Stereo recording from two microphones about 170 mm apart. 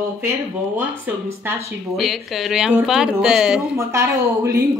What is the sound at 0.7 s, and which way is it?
Speech, 15° right (ahead or behind).